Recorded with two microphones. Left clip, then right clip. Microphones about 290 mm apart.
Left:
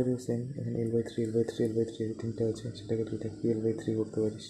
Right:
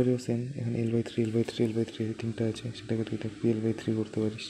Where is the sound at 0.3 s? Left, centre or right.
Right.